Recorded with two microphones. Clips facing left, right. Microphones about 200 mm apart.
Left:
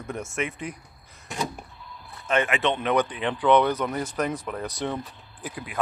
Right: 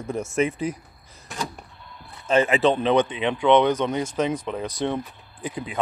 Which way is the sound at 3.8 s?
5° left (ahead or behind).